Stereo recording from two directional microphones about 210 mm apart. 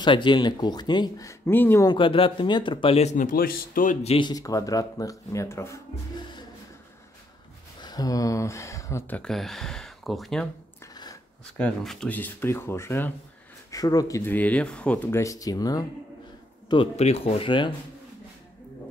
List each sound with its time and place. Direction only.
0.0 s speech: 20° left (ahead or behind)
7.8 s speech: 20° left (ahead or behind); by 10.5 s centre (ahead or behind)
11.5 s speech: 5° left (ahead or behind); by 17.7 s 25° left (ahead or behind)